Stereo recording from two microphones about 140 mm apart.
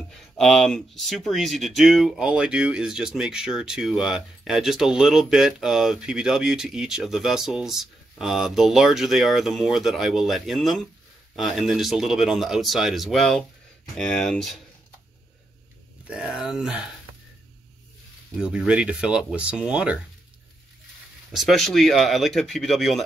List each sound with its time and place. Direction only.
0.4 s speech: centre (ahead or behind)
16.1 s speech: 5° right (ahead or behind)
18.4 s speech: 5° right (ahead or behind)
21.3 s speech: centre (ahead or behind)